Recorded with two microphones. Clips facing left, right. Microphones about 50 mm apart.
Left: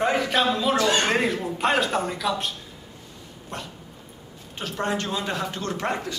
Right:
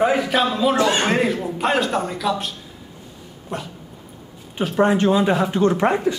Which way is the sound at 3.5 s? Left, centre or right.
Centre.